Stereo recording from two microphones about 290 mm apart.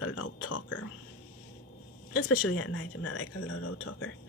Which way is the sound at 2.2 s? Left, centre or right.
Left.